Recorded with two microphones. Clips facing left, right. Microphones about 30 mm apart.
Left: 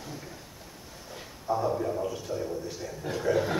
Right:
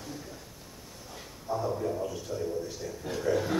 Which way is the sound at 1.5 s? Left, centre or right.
Centre.